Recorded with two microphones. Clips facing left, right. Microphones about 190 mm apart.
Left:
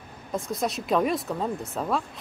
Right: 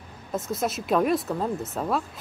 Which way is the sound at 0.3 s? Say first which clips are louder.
Right 1 dB; centre (ahead or behind).